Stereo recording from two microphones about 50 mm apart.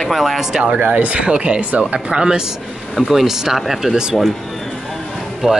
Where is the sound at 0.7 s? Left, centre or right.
Right.